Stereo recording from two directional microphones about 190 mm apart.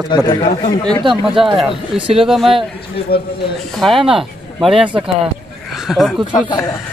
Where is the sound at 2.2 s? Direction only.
Centre (ahead or behind).